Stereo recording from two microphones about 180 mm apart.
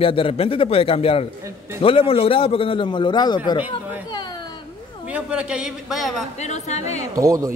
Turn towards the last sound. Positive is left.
turn(degrees=-20)  # may be behind; listen again after turning